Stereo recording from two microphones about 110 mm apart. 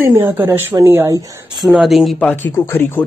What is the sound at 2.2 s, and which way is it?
Speech, 15° left (ahead or behind).